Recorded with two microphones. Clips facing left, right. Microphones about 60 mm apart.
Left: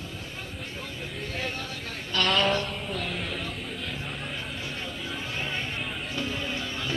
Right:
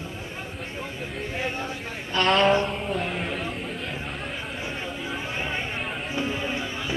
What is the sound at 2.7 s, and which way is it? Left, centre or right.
Music, centre.